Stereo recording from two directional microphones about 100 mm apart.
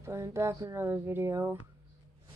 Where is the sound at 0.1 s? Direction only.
30° right (ahead or behind).